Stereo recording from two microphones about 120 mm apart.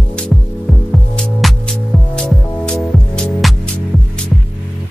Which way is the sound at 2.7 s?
5° left (ahead or behind).